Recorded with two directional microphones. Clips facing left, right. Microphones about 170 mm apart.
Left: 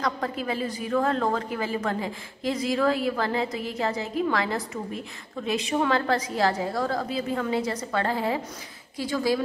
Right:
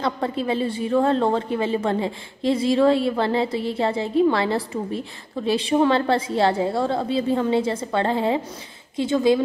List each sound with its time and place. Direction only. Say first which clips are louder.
0.0 s a woman's voice: right 4 dB; 25° right (ahead or behind)